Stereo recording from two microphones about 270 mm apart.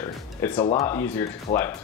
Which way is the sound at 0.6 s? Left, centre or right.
Left.